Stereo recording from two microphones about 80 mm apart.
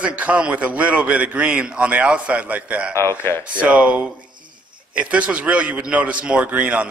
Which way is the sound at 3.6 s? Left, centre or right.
Centre.